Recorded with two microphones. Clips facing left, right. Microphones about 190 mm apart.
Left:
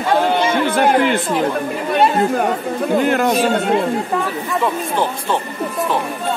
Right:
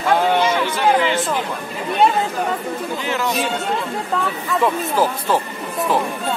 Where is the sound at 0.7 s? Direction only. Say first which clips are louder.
Left 3 dB; 55° left (ahead or behind).